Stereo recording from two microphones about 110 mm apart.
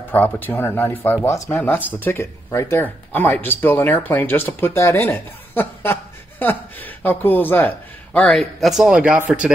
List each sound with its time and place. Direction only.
0.1 s speech: 15° left (ahead or behind)
8.4 s speech: centre (ahead or behind)